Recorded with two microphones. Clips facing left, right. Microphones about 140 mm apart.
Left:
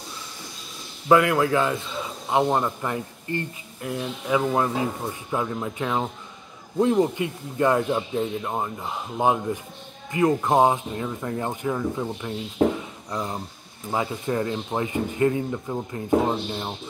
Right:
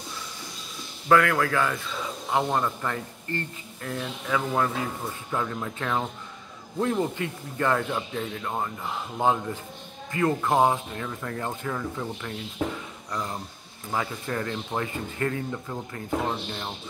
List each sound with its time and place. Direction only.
1.0 s speech: 20° left (ahead or behind)